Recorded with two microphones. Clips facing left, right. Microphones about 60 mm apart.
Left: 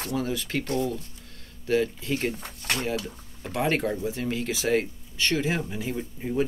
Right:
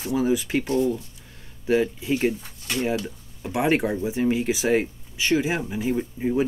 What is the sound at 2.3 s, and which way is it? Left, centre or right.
Speech, left.